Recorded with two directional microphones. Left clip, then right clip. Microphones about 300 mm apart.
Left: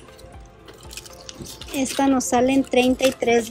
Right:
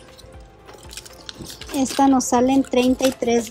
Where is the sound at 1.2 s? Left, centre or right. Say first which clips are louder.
Right 2 dB; centre.